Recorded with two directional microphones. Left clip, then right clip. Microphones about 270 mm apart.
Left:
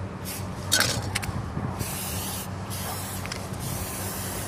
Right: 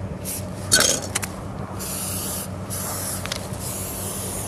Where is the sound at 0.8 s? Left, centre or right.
Right.